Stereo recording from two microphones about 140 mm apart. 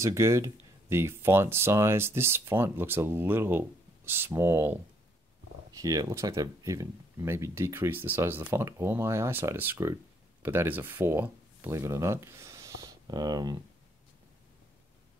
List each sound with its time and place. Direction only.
0.0 s speech: 20° right (ahead or behind)